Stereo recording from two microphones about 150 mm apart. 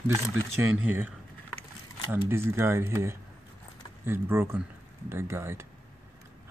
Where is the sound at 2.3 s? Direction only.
15° right (ahead or behind).